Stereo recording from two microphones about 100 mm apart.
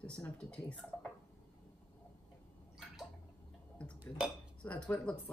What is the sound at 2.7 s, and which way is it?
Bathtub, centre (ahead or behind).